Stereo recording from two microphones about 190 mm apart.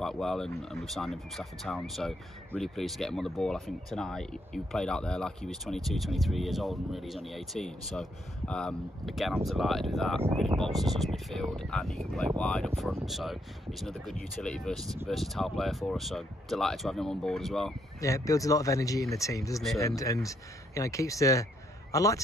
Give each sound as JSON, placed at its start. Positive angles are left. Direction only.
{"t": 0.0, "sound": "speech", "side_deg": 0}
{"t": 18.0, "sound": "speech", "side_deg": 15}